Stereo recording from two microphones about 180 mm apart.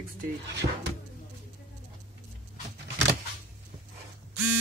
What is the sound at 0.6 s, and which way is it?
Speech, 45° right (ahead or behind).